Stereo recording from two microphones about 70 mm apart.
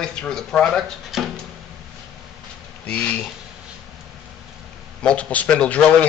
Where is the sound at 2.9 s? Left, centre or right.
Centre.